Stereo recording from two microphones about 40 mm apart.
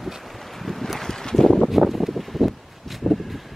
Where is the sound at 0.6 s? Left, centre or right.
Centre.